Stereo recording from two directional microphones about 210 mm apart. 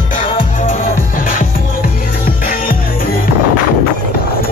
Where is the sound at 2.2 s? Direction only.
40° left (ahead or behind).